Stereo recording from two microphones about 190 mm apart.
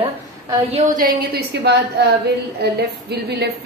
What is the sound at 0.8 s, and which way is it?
A woman's voice, 45° right (ahead or behind).